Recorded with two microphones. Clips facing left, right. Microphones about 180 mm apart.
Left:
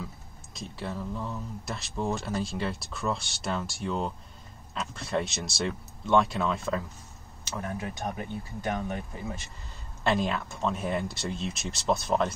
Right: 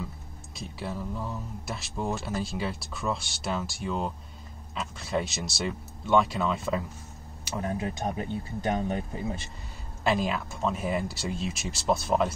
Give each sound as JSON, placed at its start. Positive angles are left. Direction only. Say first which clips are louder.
{"t": 0.6, "sound": "speech", "louder": "even", "side_deg": -5}
{"t": 7.5, "sound": "speech", "louder": "right 4 dB", "side_deg": -25}
{"t": 10.0, "sound": "speech", "louder": "even", "side_deg": -5}